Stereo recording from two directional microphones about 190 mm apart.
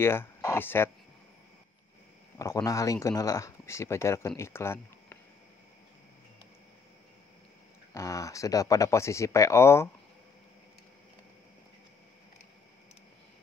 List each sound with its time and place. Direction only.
0.0 s speech: 15° left (ahead or behind)
2.3 s speech: 15° left (ahead or behind)
7.9 s speech: 15° left (ahead or behind)